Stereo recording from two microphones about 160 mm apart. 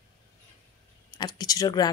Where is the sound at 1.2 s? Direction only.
25° left (ahead or behind).